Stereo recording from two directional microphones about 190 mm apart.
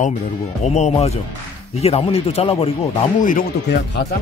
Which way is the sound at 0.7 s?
35° left (ahead or behind).